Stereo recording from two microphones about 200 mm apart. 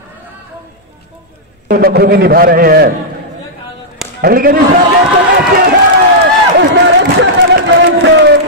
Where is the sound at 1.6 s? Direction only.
50° right (ahead or behind).